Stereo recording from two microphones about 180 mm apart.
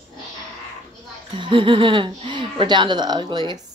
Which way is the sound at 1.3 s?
25° right (ahead or behind).